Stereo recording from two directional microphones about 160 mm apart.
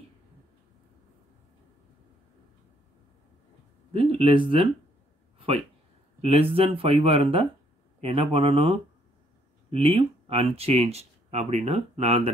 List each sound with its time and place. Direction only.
3.9 s speech: 35° right (ahead or behind)
6.2 s speech: 35° right (ahead or behind)